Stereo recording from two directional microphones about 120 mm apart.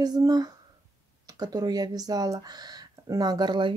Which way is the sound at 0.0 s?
35° right (ahead or behind).